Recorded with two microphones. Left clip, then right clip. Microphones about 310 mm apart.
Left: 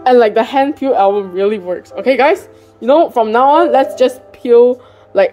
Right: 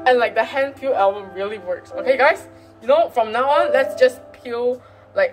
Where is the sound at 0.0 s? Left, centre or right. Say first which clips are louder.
Left 7 dB; left.